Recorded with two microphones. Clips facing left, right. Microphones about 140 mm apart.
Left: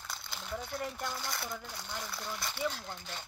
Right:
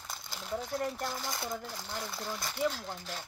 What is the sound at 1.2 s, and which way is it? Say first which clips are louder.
Speech: right 3 dB; 20° right (ahead or behind).